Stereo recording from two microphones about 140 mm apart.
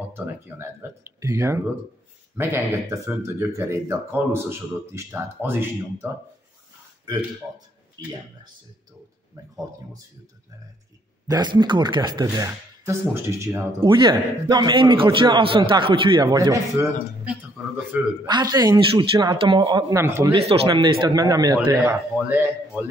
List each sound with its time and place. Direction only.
0.1 s speech: 15° right (ahead or behind)
8.0 s speech: 30° right (ahead or behind)
11.2 s speech: 30° right (ahead or behind)
13.7 s a man's voice: 35° right (ahead or behind)
17.3 s speech: 10° right (ahead or behind)
18.2 s speech: 30° right (ahead or behind)
20.0 s speech: 20° right (ahead or behind)
20.6 s speech: 30° right (ahead or behind)
21.5 s speech: 15° right (ahead or behind)